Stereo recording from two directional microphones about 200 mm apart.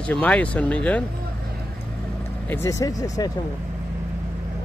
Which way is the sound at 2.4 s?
10° left (ahead or behind).